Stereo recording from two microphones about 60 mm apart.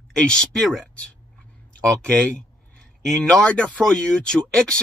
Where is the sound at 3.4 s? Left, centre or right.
Centre.